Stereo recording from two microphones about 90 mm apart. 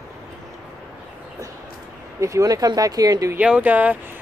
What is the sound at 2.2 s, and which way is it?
Speech, 40° right (ahead or behind).